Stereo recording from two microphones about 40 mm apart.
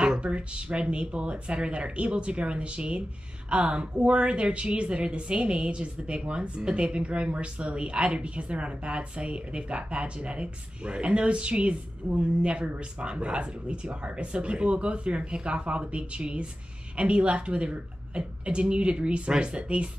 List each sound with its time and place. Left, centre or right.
0.0 s a woman's voice: right